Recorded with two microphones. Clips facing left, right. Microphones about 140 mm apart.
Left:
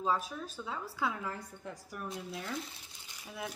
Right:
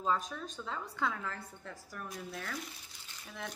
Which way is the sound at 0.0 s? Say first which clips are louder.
Left 1 dB; 10° left (ahead or behind).